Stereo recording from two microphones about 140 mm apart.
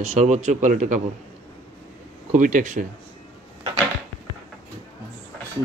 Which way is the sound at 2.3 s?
65° right (ahead or behind).